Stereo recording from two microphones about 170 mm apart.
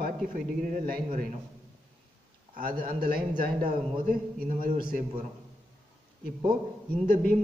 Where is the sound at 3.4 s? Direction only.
60° right (ahead or behind).